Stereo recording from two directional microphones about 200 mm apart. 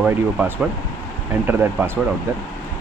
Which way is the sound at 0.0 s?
5° right (ahead or behind).